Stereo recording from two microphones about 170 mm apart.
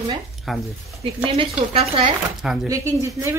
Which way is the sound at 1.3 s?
35° right (ahead or behind).